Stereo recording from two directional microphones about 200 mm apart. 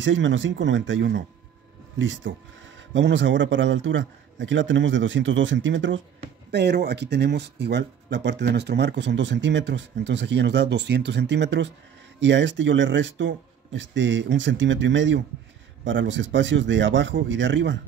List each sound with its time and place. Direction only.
0.0 s a man's voice: 70° right (ahead or behind)
6.5 s a man's voice: 55° right (ahead or behind)